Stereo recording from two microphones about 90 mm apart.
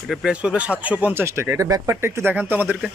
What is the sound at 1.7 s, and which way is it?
Speech, 40° right (ahead or behind).